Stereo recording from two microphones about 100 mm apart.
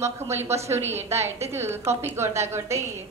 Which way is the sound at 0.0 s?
25° right (ahead or behind).